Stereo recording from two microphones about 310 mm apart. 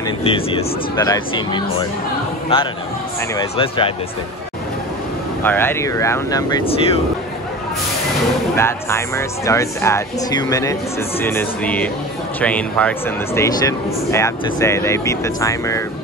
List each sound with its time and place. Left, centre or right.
0.2 s speech: centre
5.4 s speech: centre
8.5 s speech: centre